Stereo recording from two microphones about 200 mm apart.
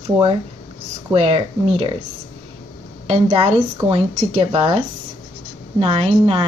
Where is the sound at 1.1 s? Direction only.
30° right (ahead or behind).